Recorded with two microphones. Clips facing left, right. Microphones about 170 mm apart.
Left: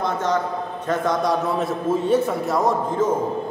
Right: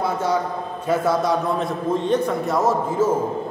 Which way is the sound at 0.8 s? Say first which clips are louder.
Right 2 dB; 5° right (ahead or behind).